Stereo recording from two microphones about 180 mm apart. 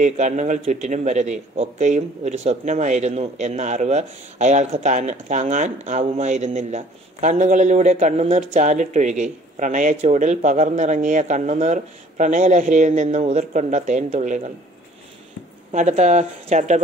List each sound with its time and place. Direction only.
0.0 s a man's voice: 40° right (ahead or behind)
15.7 s a man's voice: 40° right (ahead or behind)